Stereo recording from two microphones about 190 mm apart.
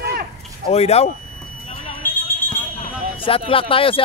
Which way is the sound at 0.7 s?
35° left (ahead or behind).